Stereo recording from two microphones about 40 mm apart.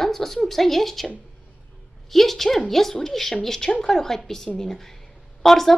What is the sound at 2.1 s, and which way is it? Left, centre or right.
A woman's voice, centre.